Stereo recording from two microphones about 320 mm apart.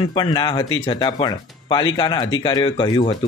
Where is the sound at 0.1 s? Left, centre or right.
Centre.